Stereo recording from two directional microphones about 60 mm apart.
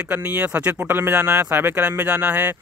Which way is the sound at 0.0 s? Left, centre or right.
Right.